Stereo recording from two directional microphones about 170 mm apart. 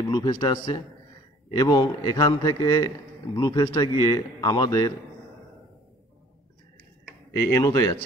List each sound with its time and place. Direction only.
0.0 s a man's voice: 25° left (ahead or behind)
7.3 s a man's voice: 20° left (ahead or behind)